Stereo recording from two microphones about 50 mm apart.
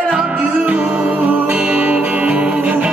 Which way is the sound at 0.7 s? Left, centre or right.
Right.